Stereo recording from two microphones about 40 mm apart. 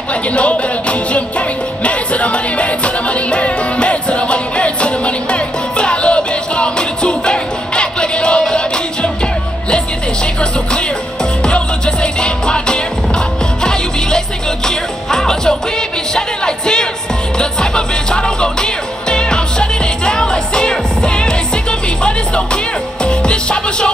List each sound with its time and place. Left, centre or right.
0.3 s music: left
11.4 s music: left
15.0 s music: centre